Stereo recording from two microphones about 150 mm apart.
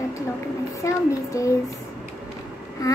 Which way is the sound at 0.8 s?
20° left (ahead or behind).